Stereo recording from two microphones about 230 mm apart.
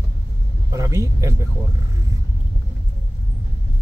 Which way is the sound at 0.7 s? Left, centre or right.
Centre.